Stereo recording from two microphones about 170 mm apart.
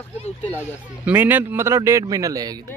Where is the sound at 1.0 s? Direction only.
10° right (ahead or behind).